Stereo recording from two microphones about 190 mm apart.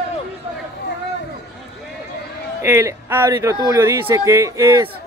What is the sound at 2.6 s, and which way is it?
Speech, 15° right (ahead or behind).